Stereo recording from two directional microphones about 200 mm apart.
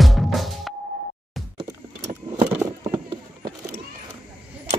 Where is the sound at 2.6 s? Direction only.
15° right (ahead or behind).